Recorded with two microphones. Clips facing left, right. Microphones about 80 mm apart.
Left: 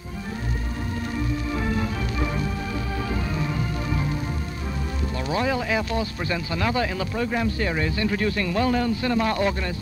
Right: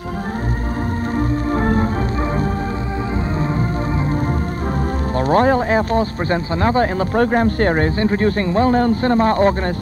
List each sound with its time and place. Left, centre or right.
1.1 s music: right
5.1 s speech: right